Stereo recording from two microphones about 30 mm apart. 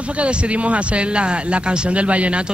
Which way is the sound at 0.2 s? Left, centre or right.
Right.